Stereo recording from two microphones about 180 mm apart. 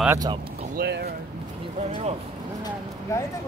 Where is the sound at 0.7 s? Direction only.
65° right (ahead or behind).